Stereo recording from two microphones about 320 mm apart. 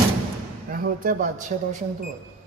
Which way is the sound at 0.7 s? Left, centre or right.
Right.